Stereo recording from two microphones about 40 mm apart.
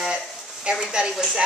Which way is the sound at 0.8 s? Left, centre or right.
Right.